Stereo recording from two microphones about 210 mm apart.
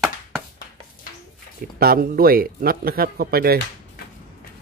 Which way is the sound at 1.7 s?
45° right (ahead or behind).